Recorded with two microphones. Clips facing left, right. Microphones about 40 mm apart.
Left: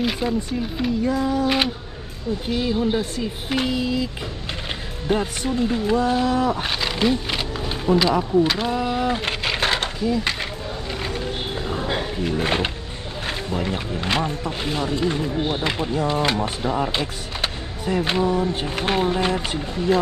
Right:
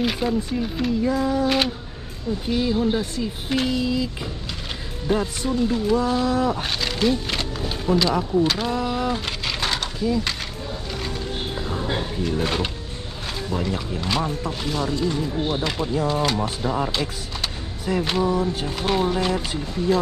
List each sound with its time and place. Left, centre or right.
0.0 s speech: centre
9.1 s a sound: left
11.9 s music: left
13.5 s speech: left
18.5 s speech: left